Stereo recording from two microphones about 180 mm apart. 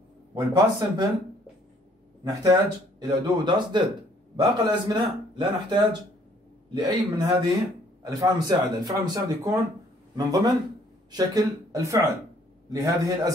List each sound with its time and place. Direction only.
0.3 s speech: 25° right (ahead or behind)
2.2 s speech: 20° right (ahead or behind)